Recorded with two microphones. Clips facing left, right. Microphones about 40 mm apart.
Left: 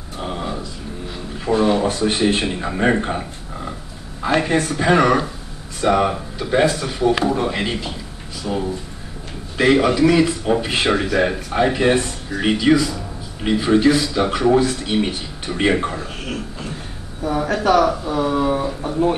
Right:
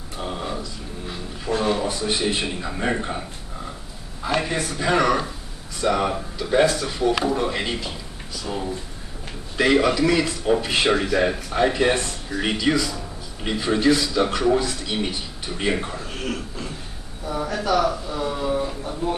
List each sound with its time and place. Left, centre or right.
0.2 s a sound: centre
2.0 s speech: left
2.2 s speech: centre
4.2 s a sound: left
4.6 s speech: left
14.6 s speech: left
15.4 s speech: left
17.3 s speech: left